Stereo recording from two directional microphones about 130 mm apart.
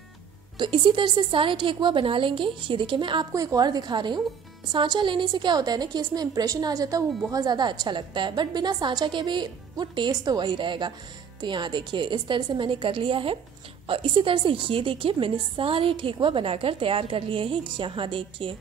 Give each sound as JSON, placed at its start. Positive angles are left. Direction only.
{"t": 0.6, "sound": "a woman's voice", "side_deg": -40}